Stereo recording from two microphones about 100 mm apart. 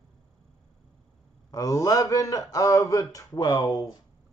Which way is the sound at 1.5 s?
35° left (ahead or behind).